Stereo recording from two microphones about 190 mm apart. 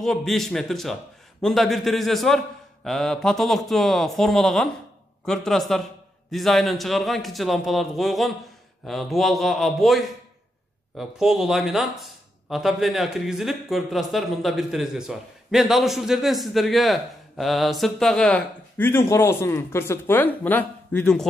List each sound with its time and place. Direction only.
0.0 s speech: centre (ahead or behind)